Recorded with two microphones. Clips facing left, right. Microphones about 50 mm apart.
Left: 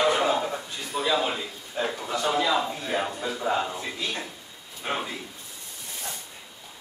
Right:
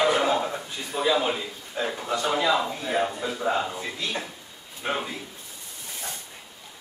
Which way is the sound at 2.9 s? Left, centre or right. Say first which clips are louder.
Right 3 dB; centre.